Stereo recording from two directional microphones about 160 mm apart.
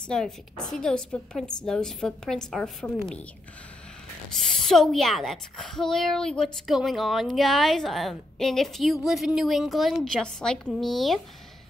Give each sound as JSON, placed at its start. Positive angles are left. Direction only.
{"t": 0.0, "sound": "a child's voice", "side_deg": 5}
{"t": 4.3, "sound": "a child's voice", "side_deg": 0}